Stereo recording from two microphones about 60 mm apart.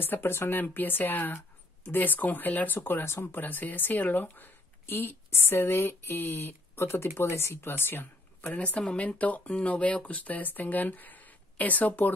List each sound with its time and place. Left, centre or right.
0.0 s speech: left
8.5 s speech: left